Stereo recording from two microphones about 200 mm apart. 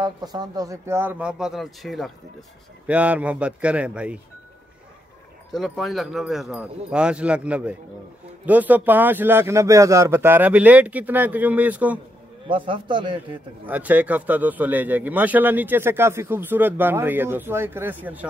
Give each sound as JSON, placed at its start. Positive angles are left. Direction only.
{"t": 0.0, "sound": "a man's voice", "side_deg": -20}
{"t": 5.5, "sound": "a man's voice", "side_deg": 0}
{"t": 12.4, "sound": "a man's voice", "side_deg": -25}
{"t": 13.7, "sound": "a man's voice", "side_deg": -10}